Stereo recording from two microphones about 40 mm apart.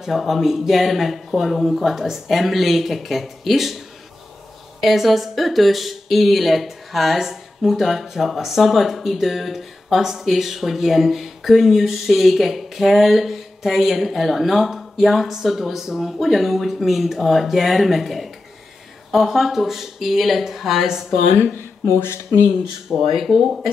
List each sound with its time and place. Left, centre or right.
0.0 s speech: centre
21.9 s speech: left
22.8 s speech: centre